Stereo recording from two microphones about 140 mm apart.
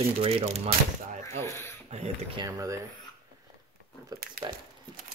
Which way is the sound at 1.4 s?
20° left (ahead or behind).